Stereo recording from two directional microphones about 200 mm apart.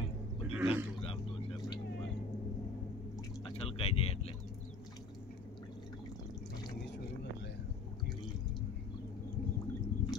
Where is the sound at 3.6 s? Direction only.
30° left (ahead or behind).